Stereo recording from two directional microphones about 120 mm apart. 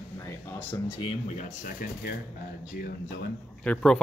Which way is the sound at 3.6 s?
5° left (ahead or behind).